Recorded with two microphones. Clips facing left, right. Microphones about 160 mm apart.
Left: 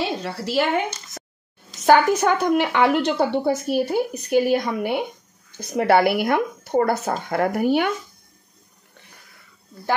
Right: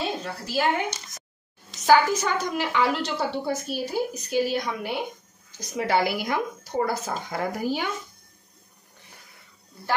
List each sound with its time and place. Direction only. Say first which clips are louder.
0.0 s a woman's voice: left 4 dB; 75° left (ahead or behind)
1.9 s a woman's voice: left 4 dB; 55° left (ahead or behind)